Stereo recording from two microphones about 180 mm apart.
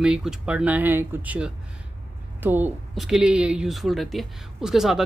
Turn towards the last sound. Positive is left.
turn(degrees=0)  # may be behind; listen again after turning